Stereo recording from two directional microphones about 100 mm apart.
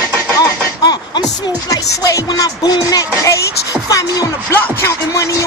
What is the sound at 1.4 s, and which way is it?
Speech, 35° left (ahead or behind).